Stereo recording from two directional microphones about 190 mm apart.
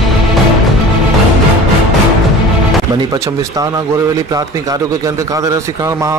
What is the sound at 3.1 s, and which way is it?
A man's voice, 20° right (ahead or behind).